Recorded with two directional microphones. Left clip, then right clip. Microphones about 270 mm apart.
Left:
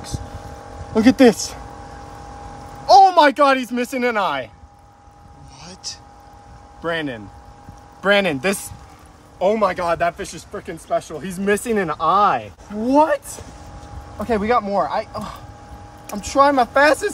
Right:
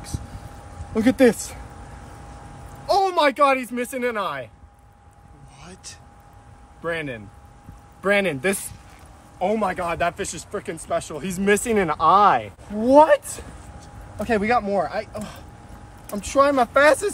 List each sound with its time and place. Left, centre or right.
0.9 s speech: centre
2.9 s a sound: centre
3.7 s speech: left
5.6 s speech: centre
6.8 s speech: centre
9.4 s speech: centre
14.2 s speech: centre